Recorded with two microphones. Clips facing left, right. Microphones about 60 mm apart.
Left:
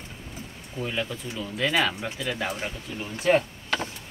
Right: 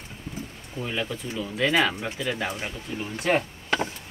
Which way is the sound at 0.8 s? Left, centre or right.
Centre.